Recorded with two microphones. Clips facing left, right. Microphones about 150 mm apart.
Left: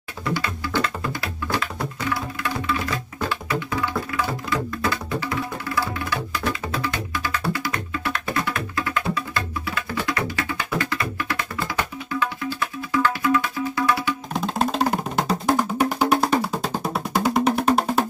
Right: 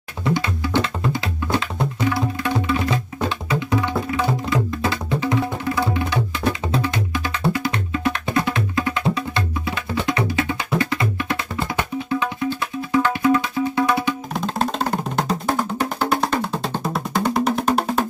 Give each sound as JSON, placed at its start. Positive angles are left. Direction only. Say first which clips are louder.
{"t": 0.2, "sound": "music", "louder": "right 4 dB", "side_deg": -20}
{"t": 3.3, "sound": "music", "louder": "right 3 dB", "side_deg": -20}
{"t": 14.3, "sound": "music", "louder": "left 3 dB", "side_deg": 5}